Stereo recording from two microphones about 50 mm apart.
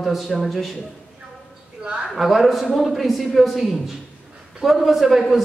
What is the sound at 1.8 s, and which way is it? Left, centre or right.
Speech, centre.